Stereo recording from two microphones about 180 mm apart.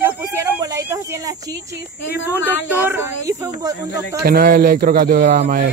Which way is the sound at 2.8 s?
15° right (ahead or behind).